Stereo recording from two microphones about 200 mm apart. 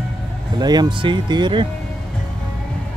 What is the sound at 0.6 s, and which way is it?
Speech, 20° right (ahead or behind).